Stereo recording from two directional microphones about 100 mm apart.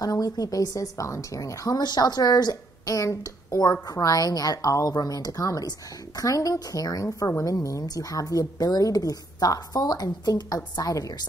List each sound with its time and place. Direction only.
0.0 s a woman's voice: 40° left (ahead or behind)